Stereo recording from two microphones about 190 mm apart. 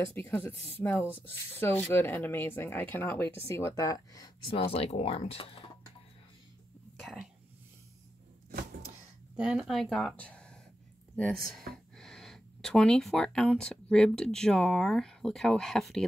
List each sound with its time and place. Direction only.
0.0 s speech: 10° left (ahead or behind)
4.6 s speech: 30° left (ahead or behind)
7.0 s a sound: centre (ahead or behind)
9.4 s speech: 5° right (ahead or behind)
11.5 s speech: centre (ahead or behind)